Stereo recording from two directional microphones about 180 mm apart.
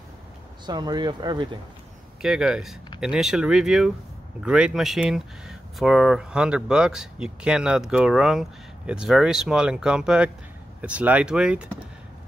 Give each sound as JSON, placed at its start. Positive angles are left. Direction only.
{"t": 0.7, "sound": "speech", "side_deg": -25}
{"t": 2.2, "sound": "speech", "side_deg": -5}